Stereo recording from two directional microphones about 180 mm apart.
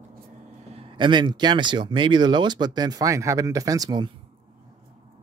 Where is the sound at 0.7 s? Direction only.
30° right (ahead or behind).